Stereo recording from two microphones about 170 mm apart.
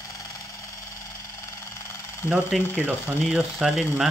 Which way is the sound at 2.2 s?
5° right (ahead or behind).